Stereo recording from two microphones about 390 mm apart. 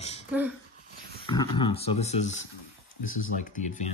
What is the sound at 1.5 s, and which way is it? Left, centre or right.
Speech, centre.